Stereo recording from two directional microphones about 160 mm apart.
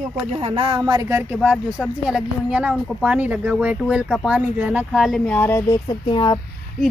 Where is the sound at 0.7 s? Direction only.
20° right (ahead or behind).